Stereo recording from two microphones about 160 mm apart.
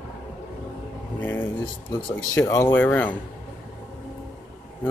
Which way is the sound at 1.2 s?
10° left (ahead or behind).